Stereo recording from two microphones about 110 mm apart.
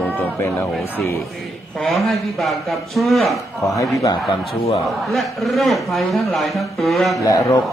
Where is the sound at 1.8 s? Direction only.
Centre (ahead or behind).